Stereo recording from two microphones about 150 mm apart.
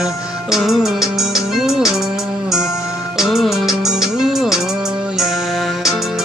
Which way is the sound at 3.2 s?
Centre (ahead or behind).